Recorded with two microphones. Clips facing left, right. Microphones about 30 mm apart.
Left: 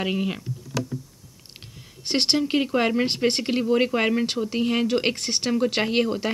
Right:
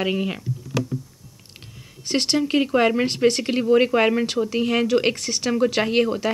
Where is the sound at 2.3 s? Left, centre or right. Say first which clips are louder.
Right 5 dB; centre.